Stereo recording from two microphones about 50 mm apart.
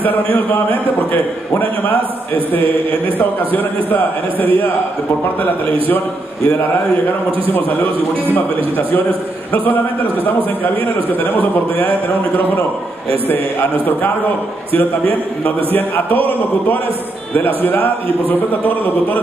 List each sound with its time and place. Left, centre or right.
3.2 s a man's voice: left
13.3 s a man's voice: left
15.4 s a man's voice: left